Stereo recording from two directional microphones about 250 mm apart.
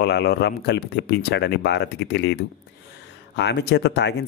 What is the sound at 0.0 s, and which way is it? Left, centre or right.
Speech, left.